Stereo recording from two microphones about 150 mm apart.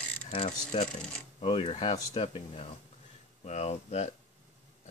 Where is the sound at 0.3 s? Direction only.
45° left (ahead or behind).